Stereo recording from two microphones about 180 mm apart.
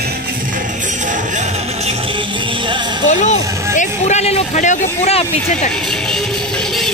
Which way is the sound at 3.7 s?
40° left (ahead or behind).